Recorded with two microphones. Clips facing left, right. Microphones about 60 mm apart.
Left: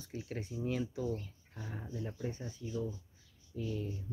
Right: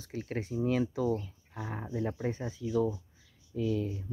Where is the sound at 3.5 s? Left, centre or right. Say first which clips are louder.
Right 8 dB; right.